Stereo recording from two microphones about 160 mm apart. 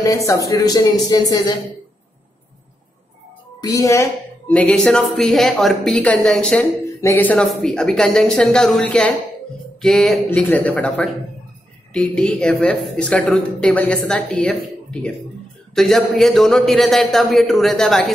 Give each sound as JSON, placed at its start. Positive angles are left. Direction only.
{"t": 0.0, "sound": "speech", "side_deg": 20}
{"t": 3.6, "sound": "speech", "side_deg": 20}
{"t": 4.5, "sound": "speech", "side_deg": 5}